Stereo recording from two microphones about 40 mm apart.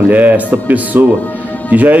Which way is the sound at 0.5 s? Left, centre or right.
Right.